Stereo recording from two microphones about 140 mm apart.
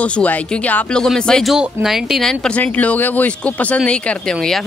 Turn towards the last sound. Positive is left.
turn(degrees=5)  # may be behind; listen again after turning